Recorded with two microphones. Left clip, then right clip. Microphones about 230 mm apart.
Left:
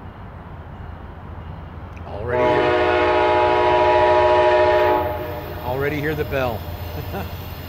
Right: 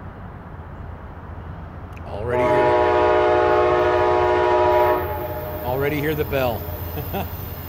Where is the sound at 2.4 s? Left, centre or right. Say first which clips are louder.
Even; centre.